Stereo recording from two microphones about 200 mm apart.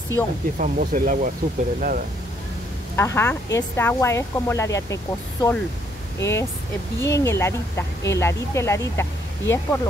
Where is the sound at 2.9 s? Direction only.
10° left (ahead or behind).